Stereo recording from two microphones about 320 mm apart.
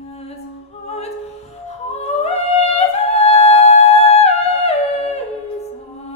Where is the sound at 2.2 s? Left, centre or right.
Centre.